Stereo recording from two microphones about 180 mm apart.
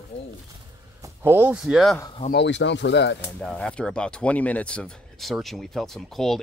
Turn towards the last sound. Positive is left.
turn(degrees=0)  # may be behind; listen again after turning